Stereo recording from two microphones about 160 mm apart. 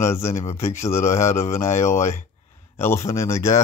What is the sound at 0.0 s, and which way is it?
Speech, 15° left (ahead or behind).